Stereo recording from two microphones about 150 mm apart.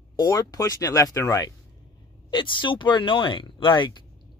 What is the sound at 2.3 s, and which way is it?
Speech, 35° left (ahead or behind).